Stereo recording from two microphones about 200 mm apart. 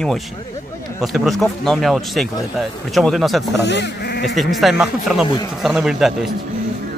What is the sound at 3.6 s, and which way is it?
Speech, 60° left (ahead or behind).